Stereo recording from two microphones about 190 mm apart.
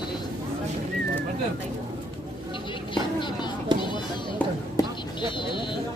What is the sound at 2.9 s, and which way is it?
Vehicle, 25° left (ahead or behind).